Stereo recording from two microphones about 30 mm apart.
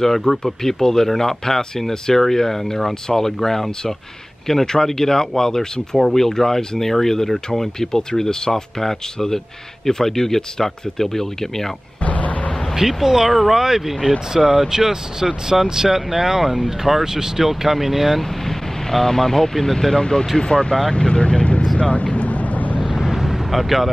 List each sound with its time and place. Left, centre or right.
0.0 s speech: centre
5.9 s speech: centre
7.9 s speech: left
12.0 s vehicle: left
12.7 s speech: centre
14.3 s speech: right
17.5 s speech: centre
18.4 s speech: centre; by 21.6 s left
21.7 s vehicle: left
22.8 s vehicle: centre